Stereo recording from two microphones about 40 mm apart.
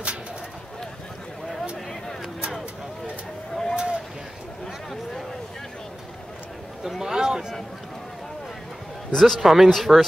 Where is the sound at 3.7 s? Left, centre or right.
Right.